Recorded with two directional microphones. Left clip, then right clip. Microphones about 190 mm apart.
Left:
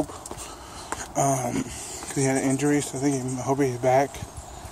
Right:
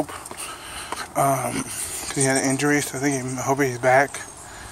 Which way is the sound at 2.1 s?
5° left (ahead or behind).